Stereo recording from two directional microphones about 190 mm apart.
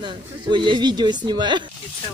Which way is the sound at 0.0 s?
25° right (ahead or behind).